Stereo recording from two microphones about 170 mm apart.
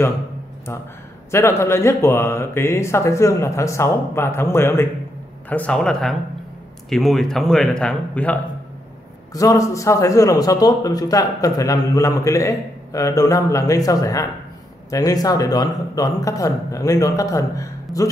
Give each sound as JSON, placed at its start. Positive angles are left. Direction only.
{"t": 1.3, "sound": "speech", "side_deg": 15}
{"t": 9.3, "sound": "a man's voice", "side_deg": 20}